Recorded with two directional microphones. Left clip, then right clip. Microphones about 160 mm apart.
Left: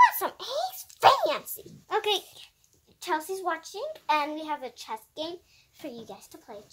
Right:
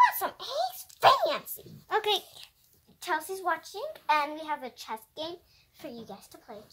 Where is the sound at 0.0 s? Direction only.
40° left (ahead or behind).